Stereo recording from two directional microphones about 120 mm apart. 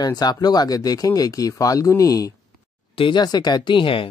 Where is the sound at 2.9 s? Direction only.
45° left (ahead or behind).